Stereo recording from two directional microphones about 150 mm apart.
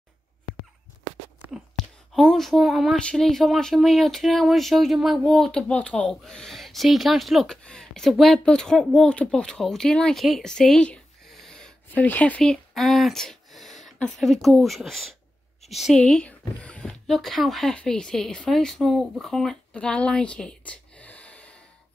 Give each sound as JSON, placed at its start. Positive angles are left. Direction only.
{"t": 2.1, "sound": "speech", "side_deg": 0}